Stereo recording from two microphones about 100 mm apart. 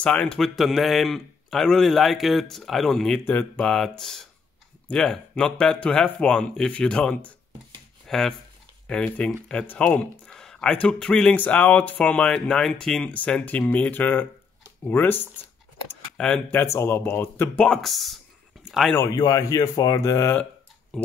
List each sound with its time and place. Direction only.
0.0 s a man's voice: 10° left (ahead or behind)
16.2 s speech: 10° left (ahead or behind)
16.5 s speech: 25° left (ahead or behind)
17.6 s a man's voice: centre (ahead or behind)
18.9 s speech: 35° left (ahead or behind)